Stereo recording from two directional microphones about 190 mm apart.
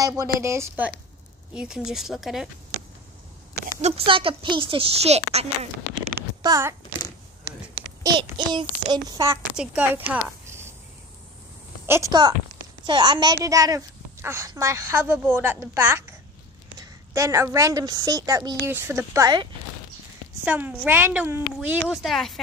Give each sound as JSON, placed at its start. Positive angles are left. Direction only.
{"t": 0.0, "sound": "a child's voice", "side_deg": -20}
{"t": 3.6, "sound": "speech", "side_deg": -35}
{"t": 6.4, "sound": "a child's voice", "side_deg": -15}
{"t": 8.0, "sound": "a child's voice", "side_deg": -25}
{"t": 11.8, "sound": "a child's voice", "side_deg": -15}
{"t": 20.4, "sound": "a child's voice", "side_deg": -10}